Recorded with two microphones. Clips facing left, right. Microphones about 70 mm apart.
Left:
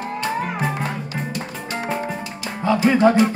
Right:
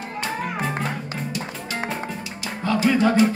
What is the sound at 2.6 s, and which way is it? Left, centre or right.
Music, left.